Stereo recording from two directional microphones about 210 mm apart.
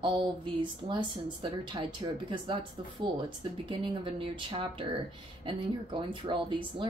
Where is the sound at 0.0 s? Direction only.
20° right (ahead or behind).